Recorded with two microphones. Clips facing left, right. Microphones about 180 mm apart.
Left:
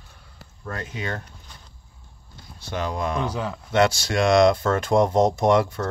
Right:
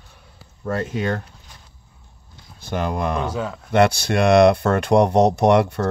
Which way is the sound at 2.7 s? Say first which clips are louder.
Right 3 dB; 55° right (ahead or behind).